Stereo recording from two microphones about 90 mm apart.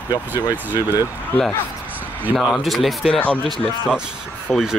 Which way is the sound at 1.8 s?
20° right (ahead or behind).